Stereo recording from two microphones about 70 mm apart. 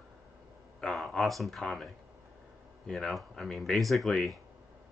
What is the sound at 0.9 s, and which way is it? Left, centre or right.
Speech, centre.